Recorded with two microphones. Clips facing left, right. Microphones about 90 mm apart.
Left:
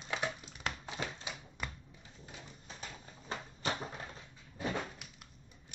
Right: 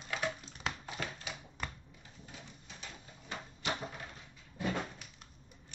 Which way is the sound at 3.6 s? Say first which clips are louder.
Left 1 dB; 35° left (ahead or behind).